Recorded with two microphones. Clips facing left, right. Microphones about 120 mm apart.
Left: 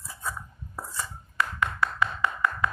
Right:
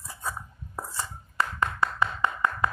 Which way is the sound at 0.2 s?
25° right (ahead or behind).